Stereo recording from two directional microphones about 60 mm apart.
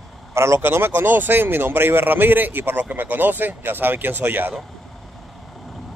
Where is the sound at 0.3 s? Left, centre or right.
Right.